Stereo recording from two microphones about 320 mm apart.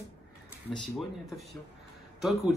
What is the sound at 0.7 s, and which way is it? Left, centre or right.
Speech, centre.